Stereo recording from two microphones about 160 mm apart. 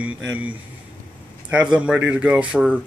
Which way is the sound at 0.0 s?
10° right (ahead or behind).